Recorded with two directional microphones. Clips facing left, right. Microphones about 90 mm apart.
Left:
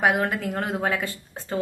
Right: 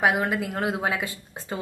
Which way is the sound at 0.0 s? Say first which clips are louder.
Left 1 dB; 5° right (ahead or behind).